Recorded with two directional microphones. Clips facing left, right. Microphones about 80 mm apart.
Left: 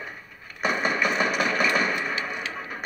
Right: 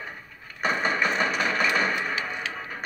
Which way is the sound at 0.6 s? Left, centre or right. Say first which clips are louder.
Even; centre.